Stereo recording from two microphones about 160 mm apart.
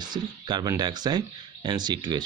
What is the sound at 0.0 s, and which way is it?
Speech, 25° right (ahead or behind).